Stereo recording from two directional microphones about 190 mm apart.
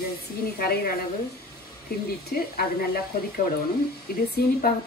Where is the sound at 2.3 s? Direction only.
55° left (ahead or behind).